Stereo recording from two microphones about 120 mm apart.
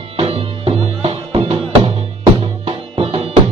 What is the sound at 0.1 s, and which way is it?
Music, 55° right (ahead or behind).